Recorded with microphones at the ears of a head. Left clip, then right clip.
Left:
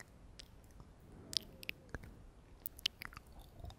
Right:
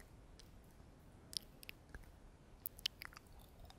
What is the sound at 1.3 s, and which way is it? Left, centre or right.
Chewing, left.